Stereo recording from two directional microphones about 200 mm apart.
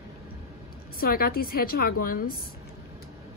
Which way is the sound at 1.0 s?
45° left (ahead or behind).